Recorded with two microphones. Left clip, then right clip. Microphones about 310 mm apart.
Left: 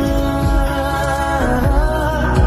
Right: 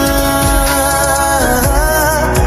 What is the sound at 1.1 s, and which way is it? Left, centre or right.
Music, right.